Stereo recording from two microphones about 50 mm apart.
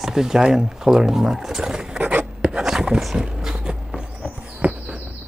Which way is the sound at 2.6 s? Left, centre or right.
Centre.